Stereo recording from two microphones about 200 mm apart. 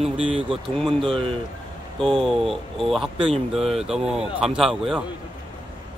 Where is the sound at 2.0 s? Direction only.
Centre (ahead or behind).